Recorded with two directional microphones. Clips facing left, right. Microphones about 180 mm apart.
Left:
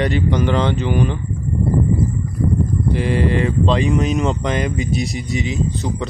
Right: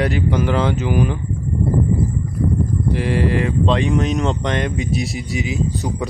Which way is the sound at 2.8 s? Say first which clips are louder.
Left 1 dB; centre (ahead or behind).